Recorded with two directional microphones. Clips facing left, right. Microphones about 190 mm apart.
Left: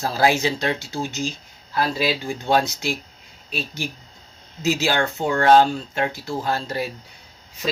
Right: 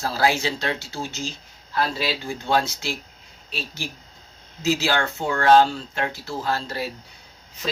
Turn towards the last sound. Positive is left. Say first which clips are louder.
# left 2 dB
turn(degrees=15)  # may be behind; listen again after turning